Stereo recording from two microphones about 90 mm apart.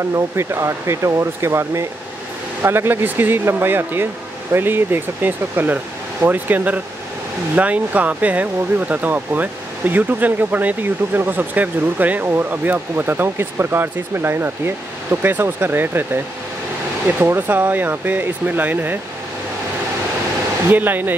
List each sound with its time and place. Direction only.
0.1 s speech: 30° right (ahead or behind)
17.2 s speech: 25° right (ahead or behind)
20.7 s speech: 20° right (ahead or behind)